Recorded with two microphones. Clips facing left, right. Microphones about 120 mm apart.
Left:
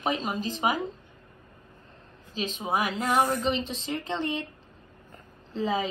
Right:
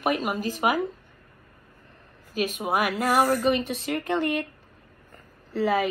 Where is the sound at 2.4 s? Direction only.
10° right (ahead or behind).